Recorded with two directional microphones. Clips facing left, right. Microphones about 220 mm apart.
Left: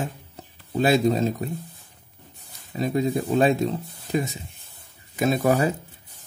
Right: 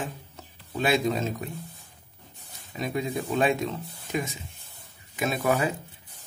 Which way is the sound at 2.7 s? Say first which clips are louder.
Left 6 dB; 35° left (ahead or behind).